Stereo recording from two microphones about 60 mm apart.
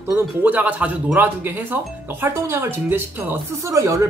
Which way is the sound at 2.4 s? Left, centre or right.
Right.